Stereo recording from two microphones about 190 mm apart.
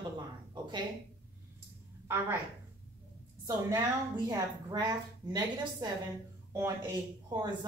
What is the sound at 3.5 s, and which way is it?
A woman's voice, 20° right (ahead or behind).